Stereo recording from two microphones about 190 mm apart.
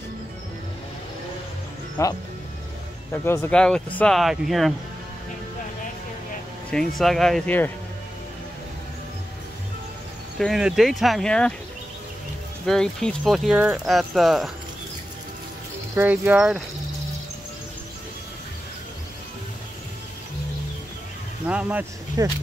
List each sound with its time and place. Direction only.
2.0 s speech: 15° left (ahead or behind); by 4.7 s centre (ahead or behind)
6.7 s speech: centre (ahead or behind)
10.4 s speech: centre (ahead or behind)
12.6 s speech: 5° left (ahead or behind)
15.9 s speech: 10° right (ahead or behind)
21.5 s speech: 5° right (ahead or behind)
22.2 s speech: 20° right (ahead or behind)